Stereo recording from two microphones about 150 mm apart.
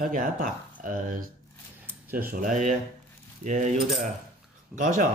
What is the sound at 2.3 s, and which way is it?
Speech, 65° right (ahead or behind).